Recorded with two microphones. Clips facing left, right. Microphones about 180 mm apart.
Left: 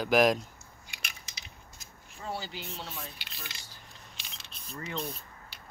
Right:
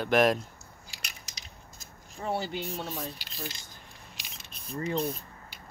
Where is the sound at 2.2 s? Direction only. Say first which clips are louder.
Right 6 dB; 60° right (ahead or behind).